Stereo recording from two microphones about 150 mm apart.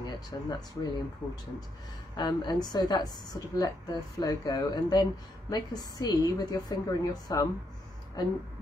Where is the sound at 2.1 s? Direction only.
30° left (ahead or behind).